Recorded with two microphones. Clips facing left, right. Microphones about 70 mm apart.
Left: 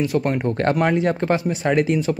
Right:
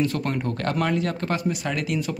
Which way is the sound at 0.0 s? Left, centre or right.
Centre.